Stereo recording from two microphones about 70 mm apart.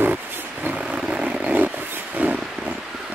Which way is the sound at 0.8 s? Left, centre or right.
Centre.